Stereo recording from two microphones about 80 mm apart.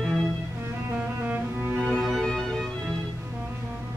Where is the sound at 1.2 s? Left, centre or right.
Right.